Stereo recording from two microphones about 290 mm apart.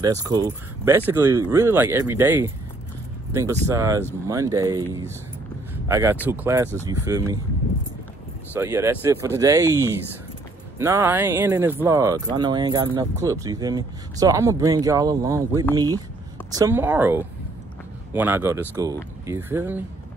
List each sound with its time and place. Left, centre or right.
0.0 s speech: centre
5.9 s speech: centre
8.5 s speech: centre